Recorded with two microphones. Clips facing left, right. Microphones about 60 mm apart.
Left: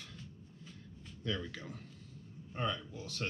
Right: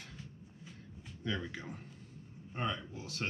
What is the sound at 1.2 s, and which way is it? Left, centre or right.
Speech, right.